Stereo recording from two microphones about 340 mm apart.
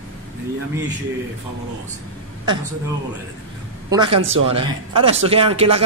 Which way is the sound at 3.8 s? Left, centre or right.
Centre.